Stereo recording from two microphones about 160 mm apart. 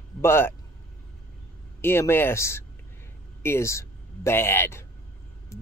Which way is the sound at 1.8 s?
15° left (ahead or behind).